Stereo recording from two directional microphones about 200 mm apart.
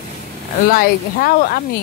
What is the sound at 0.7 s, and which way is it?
Speech, 45° left (ahead or behind).